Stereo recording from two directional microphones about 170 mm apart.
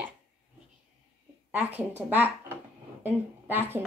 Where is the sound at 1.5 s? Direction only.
10° right (ahead or behind).